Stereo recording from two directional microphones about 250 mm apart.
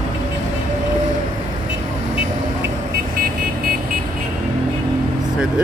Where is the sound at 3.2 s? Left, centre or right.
Right.